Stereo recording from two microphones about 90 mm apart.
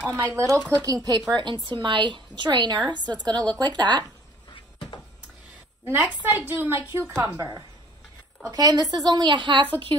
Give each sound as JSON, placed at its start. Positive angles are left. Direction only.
{"t": 0.1, "sound": "speech", "side_deg": -30}
{"t": 0.8, "sound": "speech", "side_deg": -45}
{"t": 1.3, "sound": "a woman's voice", "side_deg": -55}
{"t": 5.9, "sound": "a woman's voice", "side_deg": -25}
{"t": 7.3, "sound": "a woman's voice", "side_deg": -40}